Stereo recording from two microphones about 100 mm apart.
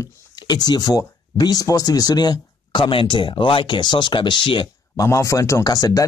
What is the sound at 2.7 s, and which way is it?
Speech, 60° left (ahead or behind).